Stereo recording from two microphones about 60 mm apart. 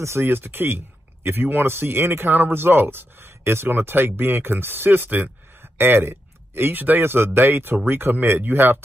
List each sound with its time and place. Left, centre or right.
0.2 s speech: right